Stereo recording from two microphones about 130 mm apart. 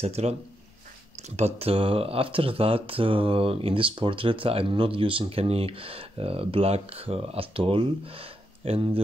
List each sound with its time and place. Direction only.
0.0 s speech: 55° right (ahead or behind)